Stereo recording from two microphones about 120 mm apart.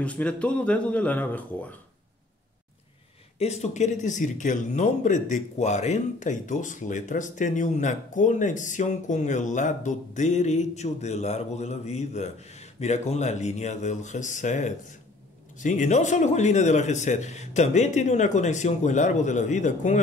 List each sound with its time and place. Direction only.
0.0 s speech: 10° left (ahead or behind)
3.3 s a man's voice: 65° left (ahead or behind); by 20.0 s 90° left